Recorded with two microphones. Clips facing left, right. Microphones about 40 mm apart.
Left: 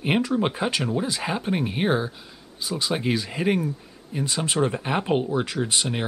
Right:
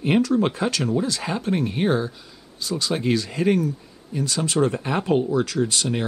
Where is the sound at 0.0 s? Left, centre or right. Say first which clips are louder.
Right 3 dB; left.